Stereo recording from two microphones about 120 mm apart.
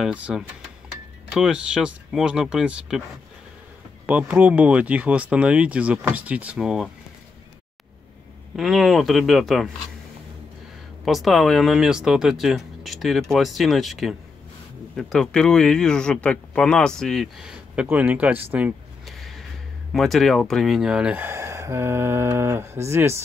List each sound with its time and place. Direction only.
0.0 s speech: 5° right (ahead or behind)
4.0 s speech: 10° right (ahead or behind)
8.5 s speech: centre (ahead or behind)
11.1 s speech: centre (ahead or behind)
19.0 s a sound: centre (ahead or behind)
19.9 s speech: centre (ahead or behind); by 23.2 s 20° right (ahead or behind)